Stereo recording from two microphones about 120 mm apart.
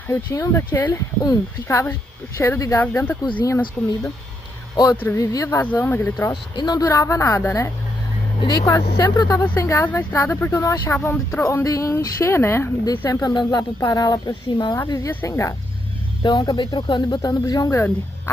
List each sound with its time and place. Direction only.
0.1 s speech: 25° left (ahead or behind)
1.2 s speech: 30° left (ahead or behind)
5.1 s speech: 30° left (ahead or behind)
5.6 s speech: 15° left (ahead or behind)
6.5 s speech: 35° left (ahead or behind)
8.4 s speech: 40° left (ahead or behind)
16.2 s speech: 35° left (ahead or behind)